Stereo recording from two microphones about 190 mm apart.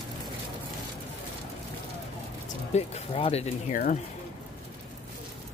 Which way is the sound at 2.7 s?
35° left (ahead or behind).